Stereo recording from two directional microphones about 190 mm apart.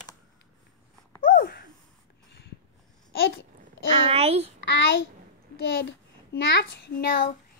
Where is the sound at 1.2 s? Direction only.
50° left (ahead or behind).